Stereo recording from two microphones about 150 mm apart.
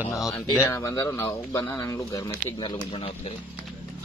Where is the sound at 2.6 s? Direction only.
35° left (ahead or behind).